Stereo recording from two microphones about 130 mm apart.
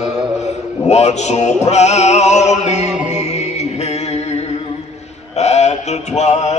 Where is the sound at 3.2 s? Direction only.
60° left (ahead or behind).